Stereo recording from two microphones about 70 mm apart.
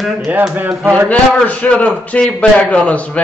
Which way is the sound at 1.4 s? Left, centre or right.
Left.